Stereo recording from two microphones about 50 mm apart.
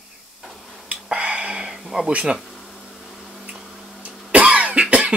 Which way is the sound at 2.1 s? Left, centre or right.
Right.